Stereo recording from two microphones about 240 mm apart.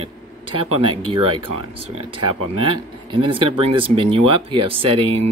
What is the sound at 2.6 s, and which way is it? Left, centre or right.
Speech, right.